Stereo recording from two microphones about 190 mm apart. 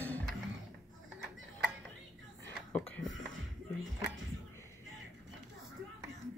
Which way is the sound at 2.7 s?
5° left (ahead or behind).